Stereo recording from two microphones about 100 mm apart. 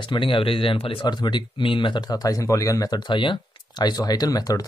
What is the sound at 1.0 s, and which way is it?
Speech, 50° left (ahead or behind).